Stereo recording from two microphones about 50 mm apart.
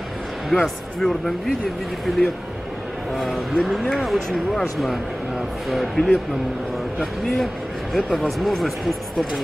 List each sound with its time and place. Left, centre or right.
0.5 s speech: centre
1.0 s speech: centre
2.0 s speech: centre
7.9 s speech: centre